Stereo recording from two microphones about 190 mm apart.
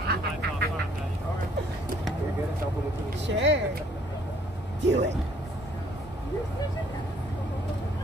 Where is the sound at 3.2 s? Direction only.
70° right (ahead or behind).